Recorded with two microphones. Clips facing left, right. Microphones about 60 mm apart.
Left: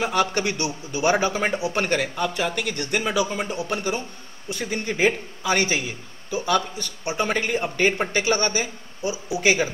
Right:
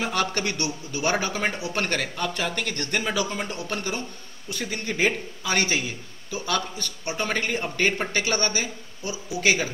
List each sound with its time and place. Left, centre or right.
0.0 s a man's voice: centre